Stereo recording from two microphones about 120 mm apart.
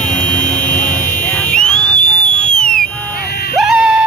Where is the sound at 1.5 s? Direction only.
5° left (ahead or behind).